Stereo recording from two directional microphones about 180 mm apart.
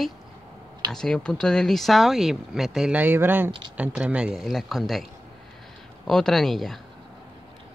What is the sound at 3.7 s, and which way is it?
Speech, 5° right (ahead or behind).